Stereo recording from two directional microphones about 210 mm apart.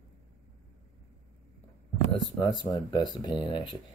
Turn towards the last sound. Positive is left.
turn(degrees=20)  # may be behind; listen again after turning